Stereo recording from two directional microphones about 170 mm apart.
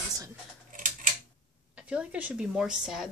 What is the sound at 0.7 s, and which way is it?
Scissors, 50° right (ahead or behind).